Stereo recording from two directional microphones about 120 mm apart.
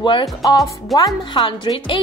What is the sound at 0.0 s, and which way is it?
A woman's voice, 40° left (ahead or behind).